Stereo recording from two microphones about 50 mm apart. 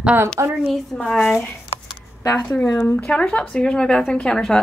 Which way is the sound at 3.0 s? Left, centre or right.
Left.